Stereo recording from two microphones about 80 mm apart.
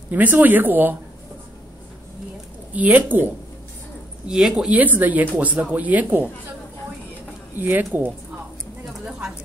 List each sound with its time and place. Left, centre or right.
0.1 s speech: right
2.7 s speech: centre
4.3 s speech: centre
4.7 s speech: right
7.5 s speech: right